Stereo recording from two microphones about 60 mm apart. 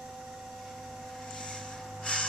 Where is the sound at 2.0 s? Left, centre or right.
Centre.